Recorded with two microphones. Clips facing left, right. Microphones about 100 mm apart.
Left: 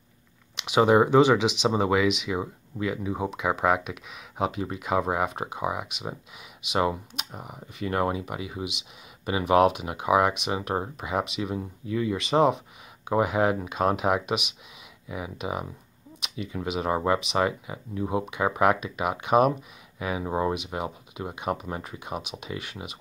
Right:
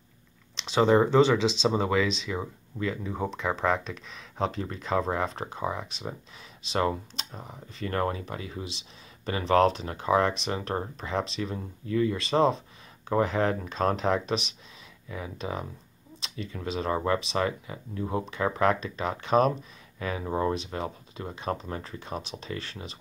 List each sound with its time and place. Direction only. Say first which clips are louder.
0.6 s speech: left 2 dB; 15° left (ahead or behind)
20.2 s speech: left 1 dB; 25° left (ahead or behind)
20.5 s speech: left 1 dB; 15° left (ahead or behind)